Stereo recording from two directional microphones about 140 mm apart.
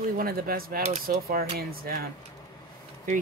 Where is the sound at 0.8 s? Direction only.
60° right (ahead or behind); by 1.9 s 90° right.